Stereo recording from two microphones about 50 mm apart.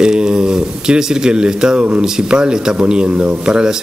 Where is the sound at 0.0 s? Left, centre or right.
Centre.